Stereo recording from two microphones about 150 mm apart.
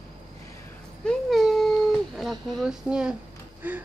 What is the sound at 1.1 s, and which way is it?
Speech, centre (ahead or behind).